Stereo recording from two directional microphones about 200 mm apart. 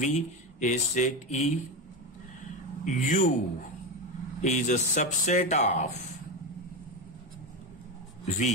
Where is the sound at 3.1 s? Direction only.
40° left (ahead or behind).